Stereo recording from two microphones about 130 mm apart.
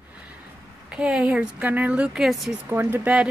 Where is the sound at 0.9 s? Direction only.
10° right (ahead or behind).